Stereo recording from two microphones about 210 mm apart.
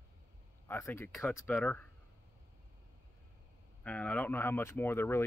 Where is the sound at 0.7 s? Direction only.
10° left (ahead or behind).